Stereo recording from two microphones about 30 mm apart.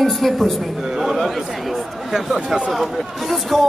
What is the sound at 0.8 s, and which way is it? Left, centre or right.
A man's voice, centre.